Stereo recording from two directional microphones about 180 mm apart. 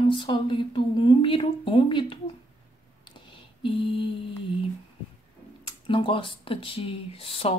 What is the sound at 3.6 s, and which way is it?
Speech, 30° left (ahead or behind).